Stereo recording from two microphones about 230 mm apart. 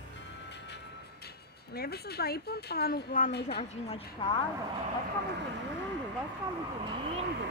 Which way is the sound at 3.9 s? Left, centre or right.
Left.